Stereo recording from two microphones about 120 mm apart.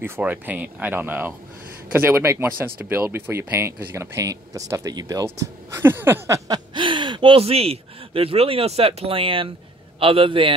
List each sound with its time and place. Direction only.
0.0 s a man's voice: 15° right (ahead or behind); by 10.5 s 45° right (ahead or behind)